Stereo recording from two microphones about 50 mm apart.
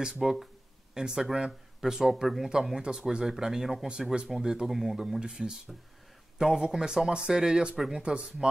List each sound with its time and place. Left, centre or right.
0.2 s speech: centre
8.0 s speech: centre